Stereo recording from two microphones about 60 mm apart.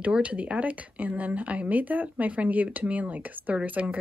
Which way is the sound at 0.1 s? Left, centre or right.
Right.